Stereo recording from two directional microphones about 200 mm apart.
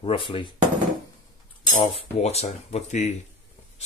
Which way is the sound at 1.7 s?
30° left (ahead or behind).